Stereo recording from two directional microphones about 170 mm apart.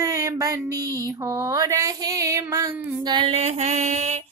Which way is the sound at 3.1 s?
35° right (ahead or behind).